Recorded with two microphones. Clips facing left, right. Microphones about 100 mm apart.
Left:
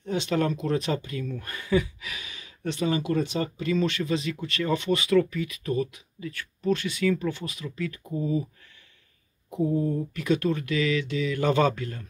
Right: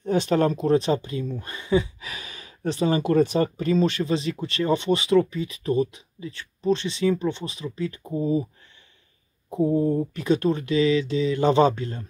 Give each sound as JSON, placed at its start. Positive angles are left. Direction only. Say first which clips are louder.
{"t": 0.0, "sound": "speech", "louder": "right 5 dB", "side_deg": -45}
{"t": 3.0, "sound": "speech", "louder": "right 6 dB", "side_deg": -45}
{"t": 9.5, "sound": "speech", "louder": "right 4 dB", "side_deg": -30}